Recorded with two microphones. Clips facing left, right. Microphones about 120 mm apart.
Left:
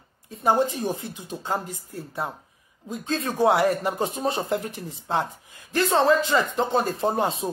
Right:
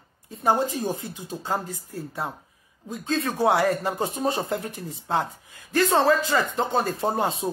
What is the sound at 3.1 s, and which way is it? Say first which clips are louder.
A man's voice: left 1 dB; 30° left (ahead or behind).